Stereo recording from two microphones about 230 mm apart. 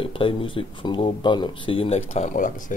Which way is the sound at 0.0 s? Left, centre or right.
Left.